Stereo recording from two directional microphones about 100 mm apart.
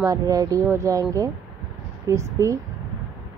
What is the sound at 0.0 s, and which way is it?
Speech, 35° right (ahead or behind).